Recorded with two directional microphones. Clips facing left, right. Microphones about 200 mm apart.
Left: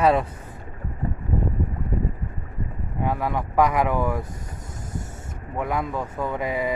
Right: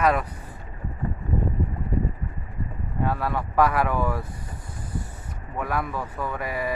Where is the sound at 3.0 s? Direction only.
15° left (ahead or behind).